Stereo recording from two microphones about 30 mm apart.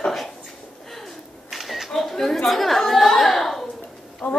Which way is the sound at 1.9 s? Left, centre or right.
Centre.